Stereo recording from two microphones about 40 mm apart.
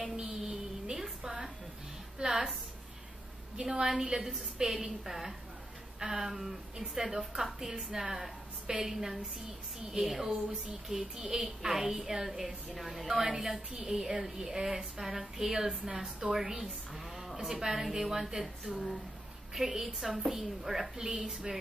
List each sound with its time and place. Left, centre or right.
0.0 s speech: centre
1.2 s music: centre
2.1 s a woman's voice: centre
3.5 s a woman's voice: centre